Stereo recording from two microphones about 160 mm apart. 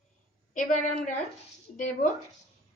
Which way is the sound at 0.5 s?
50° left (ahead or behind).